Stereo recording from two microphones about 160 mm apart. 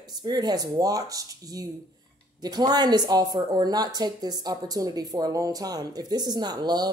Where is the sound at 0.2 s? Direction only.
25° right (ahead or behind).